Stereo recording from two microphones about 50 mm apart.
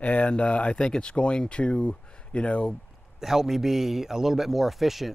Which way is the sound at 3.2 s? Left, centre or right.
Centre.